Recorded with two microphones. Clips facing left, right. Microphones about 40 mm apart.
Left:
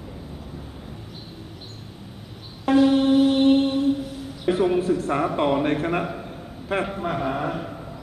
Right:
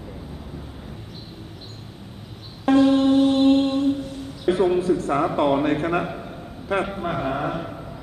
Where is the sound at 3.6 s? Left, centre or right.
Centre.